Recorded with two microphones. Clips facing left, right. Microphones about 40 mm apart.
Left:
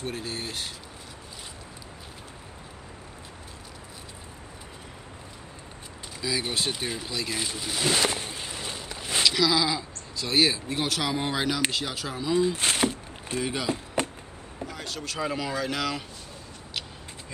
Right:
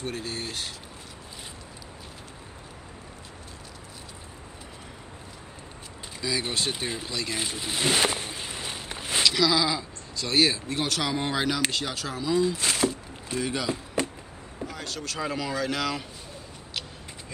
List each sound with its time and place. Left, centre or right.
0.0 s speech: centre
6.2 s speech: centre
7.3 s a sound: centre
9.1 s speech: centre
12.5 s speech: left
13.3 s speech: centre